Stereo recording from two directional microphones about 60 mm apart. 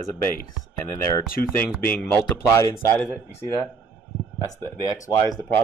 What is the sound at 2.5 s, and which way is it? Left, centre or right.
Speech, left.